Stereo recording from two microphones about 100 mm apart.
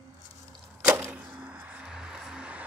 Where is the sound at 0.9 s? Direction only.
25° right (ahead or behind).